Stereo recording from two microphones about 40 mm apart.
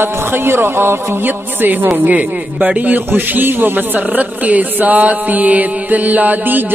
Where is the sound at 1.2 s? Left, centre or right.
Right.